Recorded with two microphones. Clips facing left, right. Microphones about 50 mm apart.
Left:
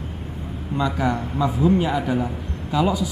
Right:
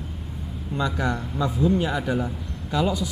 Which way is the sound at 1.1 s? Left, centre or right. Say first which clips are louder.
Left 3 dB; left.